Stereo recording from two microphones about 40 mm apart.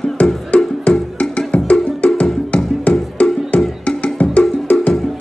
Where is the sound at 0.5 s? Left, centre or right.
Left.